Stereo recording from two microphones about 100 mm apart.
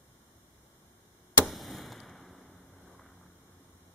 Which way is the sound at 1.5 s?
Centre (ahead or behind).